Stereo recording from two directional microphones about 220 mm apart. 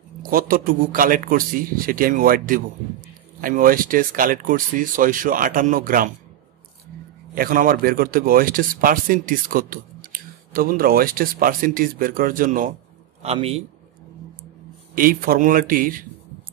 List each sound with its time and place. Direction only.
0.2 s speech: 40° right (ahead or behind)
7.3 s a man's voice: 40° right (ahead or behind)
15.0 s speech: 40° right (ahead or behind)